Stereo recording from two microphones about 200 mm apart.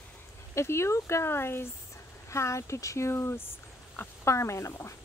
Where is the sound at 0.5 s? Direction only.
15° left (ahead or behind).